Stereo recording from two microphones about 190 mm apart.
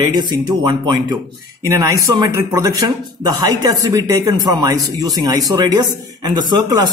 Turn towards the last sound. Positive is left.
turn(degrees=-20)  # may be behind; listen again after turning